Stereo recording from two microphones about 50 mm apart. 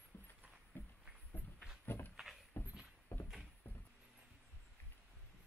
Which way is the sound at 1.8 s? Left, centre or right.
Left.